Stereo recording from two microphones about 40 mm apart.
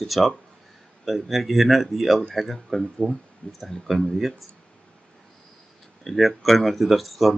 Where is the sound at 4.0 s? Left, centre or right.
Centre.